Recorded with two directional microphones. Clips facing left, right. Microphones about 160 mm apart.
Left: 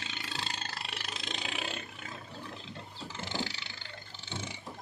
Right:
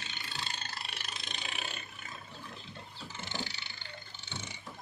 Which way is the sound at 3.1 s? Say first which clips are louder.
Left 4 dB; 90° left.